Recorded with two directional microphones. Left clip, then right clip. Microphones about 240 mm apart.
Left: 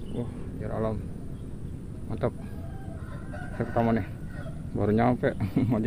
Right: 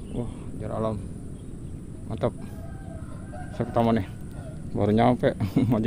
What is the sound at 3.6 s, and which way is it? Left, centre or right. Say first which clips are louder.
A man's voice: right 3 dB; centre.